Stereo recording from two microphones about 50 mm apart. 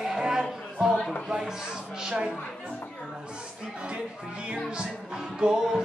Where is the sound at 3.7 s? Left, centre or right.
Centre.